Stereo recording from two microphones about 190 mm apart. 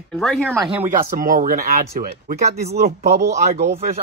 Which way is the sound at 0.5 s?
15° right (ahead or behind).